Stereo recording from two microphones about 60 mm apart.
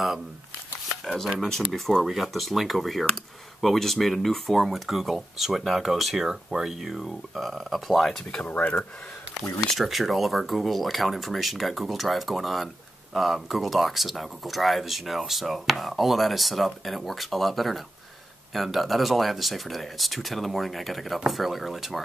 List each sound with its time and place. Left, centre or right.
1.0 s speech: centre
8.5 s speech: left
9.7 s speech: centre